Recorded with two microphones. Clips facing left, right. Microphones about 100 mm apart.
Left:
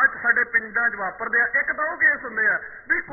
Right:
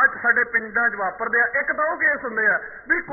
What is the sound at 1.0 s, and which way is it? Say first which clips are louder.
A man's voice: right 3 dB; centre (ahead or behind).